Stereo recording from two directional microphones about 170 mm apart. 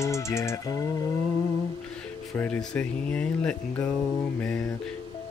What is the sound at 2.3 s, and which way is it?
Speech, 10° left (ahead or behind).